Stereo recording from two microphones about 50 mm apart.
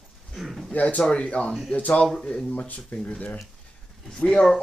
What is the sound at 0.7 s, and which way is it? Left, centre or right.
Speech, left.